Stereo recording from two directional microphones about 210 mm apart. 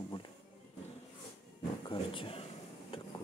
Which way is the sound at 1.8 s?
25° left (ahead or behind).